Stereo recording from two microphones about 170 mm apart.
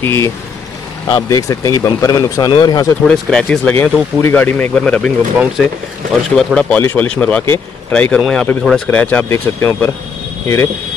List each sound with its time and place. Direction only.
0.0 s speech: 15° left (ahead or behind)
3.1 s speech: 5° left (ahead or behind)
6.3 s speech: 5° left (ahead or behind)